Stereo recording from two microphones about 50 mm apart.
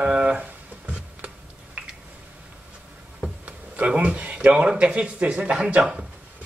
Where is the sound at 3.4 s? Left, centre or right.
Right.